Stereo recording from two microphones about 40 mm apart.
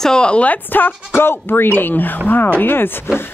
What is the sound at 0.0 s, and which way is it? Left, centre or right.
Speech, left.